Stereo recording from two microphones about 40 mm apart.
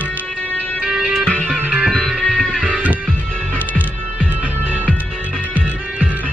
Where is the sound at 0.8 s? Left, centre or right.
Right.